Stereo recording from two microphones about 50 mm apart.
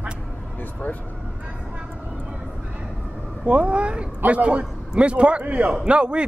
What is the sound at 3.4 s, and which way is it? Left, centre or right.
A man's voice, right.